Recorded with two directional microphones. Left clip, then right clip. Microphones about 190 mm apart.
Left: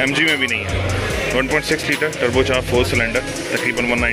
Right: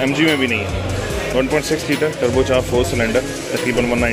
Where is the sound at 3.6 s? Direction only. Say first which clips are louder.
Right 1 dB; centre (ahead or behind).